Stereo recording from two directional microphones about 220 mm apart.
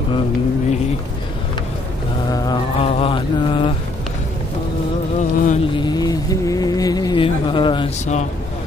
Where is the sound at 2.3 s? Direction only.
20° left (ahead or behind).